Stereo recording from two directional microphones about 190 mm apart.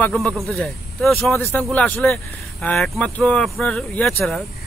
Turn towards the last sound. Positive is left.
turn(degrees=5)  # may be behind; listen again after turning